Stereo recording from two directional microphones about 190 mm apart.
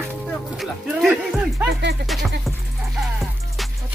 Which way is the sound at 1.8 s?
60° right (ahead or behind).